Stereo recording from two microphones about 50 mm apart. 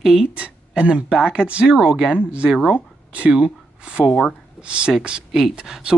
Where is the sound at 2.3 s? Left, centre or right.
Right.